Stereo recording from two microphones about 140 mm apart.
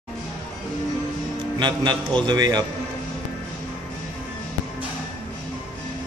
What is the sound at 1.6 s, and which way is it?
A man's voice, 30° right (ahead or behind).